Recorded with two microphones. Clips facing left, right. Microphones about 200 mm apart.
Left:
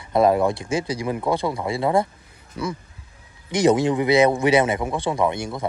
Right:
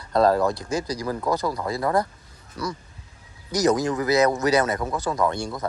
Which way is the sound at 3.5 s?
30° left (ahead or behind).